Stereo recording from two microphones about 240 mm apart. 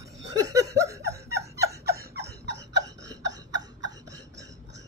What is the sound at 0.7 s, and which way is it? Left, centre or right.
Laughter, centre.